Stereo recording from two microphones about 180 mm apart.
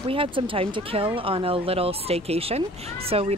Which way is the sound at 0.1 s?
30° right (ahead or behind).